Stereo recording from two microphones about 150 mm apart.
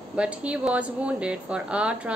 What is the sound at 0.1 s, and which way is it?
A woman's voice, 5° right (ahead or behind).